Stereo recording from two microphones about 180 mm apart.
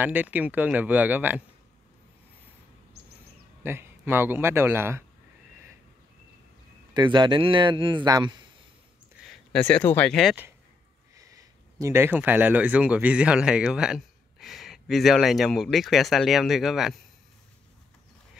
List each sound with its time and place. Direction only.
0.0 s speech: 10° right (ahead or behind)
3.6 s speech: 10° right (ahead or behind)
6.9 s a man's voice: 25° right (ahead or behind)
9.2 s speech: 5° left (ahead or behind)
11.1 s speech: 20° right (ahead or behind); by 17.0 s centre (ahead or behind)